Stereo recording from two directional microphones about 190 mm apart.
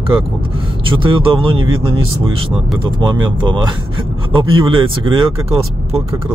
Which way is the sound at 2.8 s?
25° right (ahead or behind).